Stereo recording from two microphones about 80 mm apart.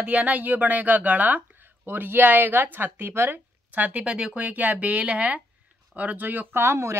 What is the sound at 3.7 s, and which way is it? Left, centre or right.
Speech, centre.